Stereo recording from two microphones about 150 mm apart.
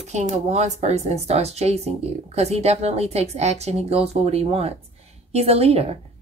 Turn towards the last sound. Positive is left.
turn(degrees=-40)  # may be behind; listen again after turning